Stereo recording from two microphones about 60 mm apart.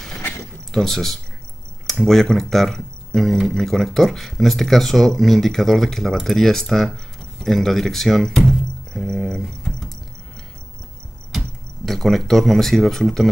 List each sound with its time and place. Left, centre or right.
0.7 s speech: centre
9.2 s cricket: centre
11.3 s speech: centre